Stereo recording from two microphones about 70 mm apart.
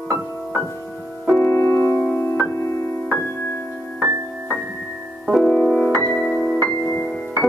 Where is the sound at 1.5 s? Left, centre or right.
Left.